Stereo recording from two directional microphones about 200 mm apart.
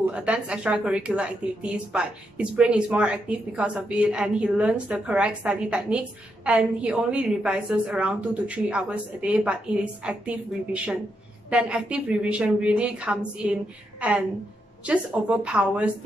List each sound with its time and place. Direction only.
0.1 s speech: 5° right (ahead or behind)